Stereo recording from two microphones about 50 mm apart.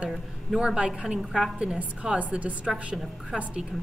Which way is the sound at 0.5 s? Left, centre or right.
Centre.